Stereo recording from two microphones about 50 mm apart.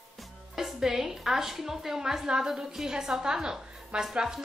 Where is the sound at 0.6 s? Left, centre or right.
Centre.